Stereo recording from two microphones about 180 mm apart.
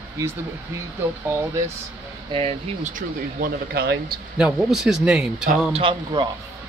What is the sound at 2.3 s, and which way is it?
Speech, 30° right (ahead or behind).